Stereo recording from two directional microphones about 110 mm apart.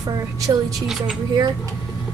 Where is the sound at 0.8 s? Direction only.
5° right (ahead or behind).